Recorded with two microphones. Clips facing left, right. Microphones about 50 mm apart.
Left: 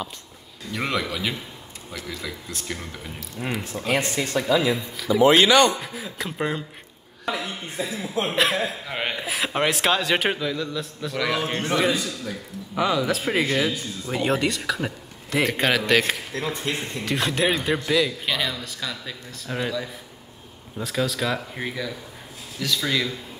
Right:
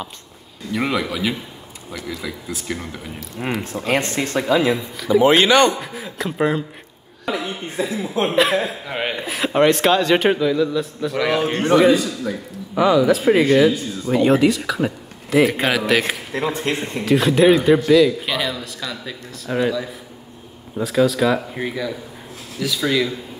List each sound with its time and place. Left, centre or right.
0.7 s a man's voice: centre
3.4 s speech: right
4.6 s a man's voice: centre
5.2 s speech: right
5.8 s a man's voice: centre
12.7 s a man's voice: centre